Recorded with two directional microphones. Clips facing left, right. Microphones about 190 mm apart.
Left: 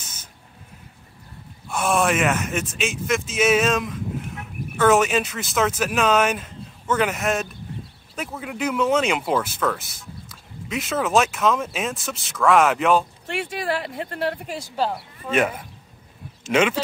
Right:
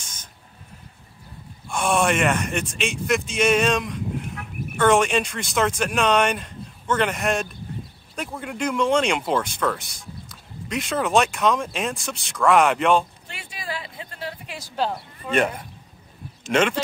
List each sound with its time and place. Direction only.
0.0 s a sound: 5° left (ahead or behind)
1.7 s speech: centre (ahead or behind)
13.3 s speech: 70° left (ahead or behind)
14.8 s speech: 5° left (ahead or behind)